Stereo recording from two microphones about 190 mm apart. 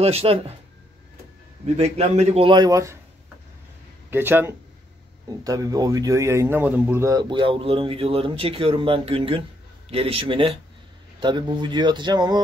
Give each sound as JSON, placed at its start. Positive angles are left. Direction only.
{"t": 0.0, "sound": "speech", "side_deg": -30}
{"t": 1.8, "sound": "a man's voice", "side_deg": -35}
{"t": 4.1, "sound": "a man's voice", "side_deg": -10}